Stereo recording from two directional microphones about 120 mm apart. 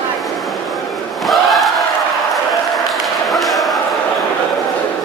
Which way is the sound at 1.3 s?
Centre (ahead or behind).